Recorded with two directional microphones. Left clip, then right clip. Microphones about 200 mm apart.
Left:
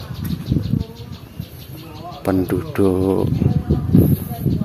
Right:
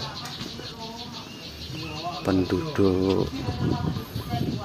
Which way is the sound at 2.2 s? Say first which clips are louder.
Left 6 dB; 30° left (ahead or behind).